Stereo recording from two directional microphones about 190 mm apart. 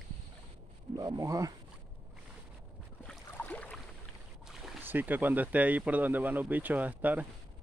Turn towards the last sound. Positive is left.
turn(degrees=-10)  # may be behind; listen again after turning